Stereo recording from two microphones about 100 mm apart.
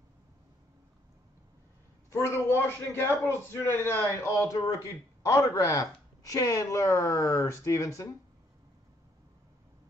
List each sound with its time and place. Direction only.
2.0 s a man's voice: 25° left (ahead or behind)